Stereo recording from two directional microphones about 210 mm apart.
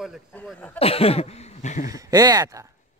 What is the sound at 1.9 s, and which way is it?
Speech, 15° right (ahead or behind).